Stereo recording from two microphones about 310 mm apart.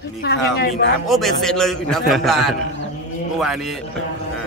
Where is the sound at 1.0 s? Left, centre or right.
Centre.